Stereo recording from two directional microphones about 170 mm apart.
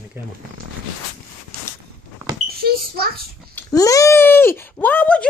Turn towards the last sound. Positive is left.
turn(degrees=10)  # may be behind; listen again after turning